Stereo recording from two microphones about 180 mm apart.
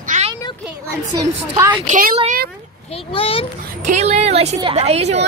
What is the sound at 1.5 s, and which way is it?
Speech, 20° right (ahead or behind).